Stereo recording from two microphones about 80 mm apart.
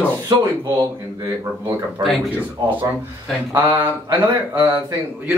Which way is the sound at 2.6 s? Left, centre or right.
Right.